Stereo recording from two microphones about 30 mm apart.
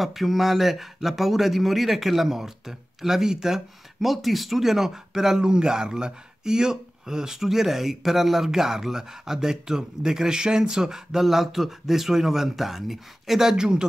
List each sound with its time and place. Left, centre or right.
0.0 s speech: centre
4.0 s speech: centre
11.2 s speech: centre
13.5 s speech: right